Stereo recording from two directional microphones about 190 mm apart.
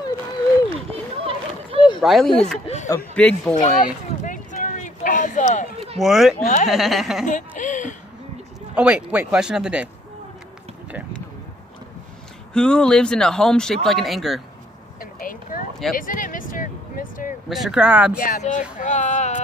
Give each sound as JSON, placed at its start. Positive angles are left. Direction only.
{"t": 0.8, "sound": "a sound", "side_deg": -30}
{"t": 2.0, "sound": "speech", "side_deg": 0}
{"t": 2.6, "sound": "speech", "side_deg": 35}
{"t": 3.2, "sound": "speech", "side_deg": 5}
{"t": 3.6, "sound": "a sound", "side_deg": 40}
{"t": 5.9, "sound": "speech", "side_deg": 0}
{"t": 6.4, "sound": "speech", "side_deg": 40}
{"t": 6.7, "sound": "speech", "side_deg": 0}
{"t": 7.2, "sound": "speech", "side_deg": 40}
{"t": 8.7, "sound": "speech", "side_deg": -5}
{"t": 12.5, "sound": "speech", "side_deg": 5}
{"t": 15.0, "sound": "a sound", "side_deg": 45}
{"t": 17.5, "sound": "speech", "side_deg": 0}
{"t": 18.2, "sound": "speech", "side_deg": 40}